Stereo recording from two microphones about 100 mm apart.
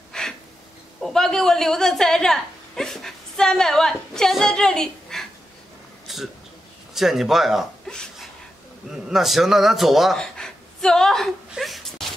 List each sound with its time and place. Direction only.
0.1 s gasp: 5° left (ahead or behind)
1.0 s a woman's voice: 5° left (ahead or behind)
6.1 s a sound: centre (ahead or behind)
8.9 s speech: centre (ahead or behind)